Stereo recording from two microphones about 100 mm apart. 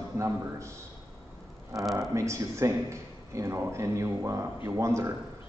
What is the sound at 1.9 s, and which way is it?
Speech, 30° right (ahead or behind).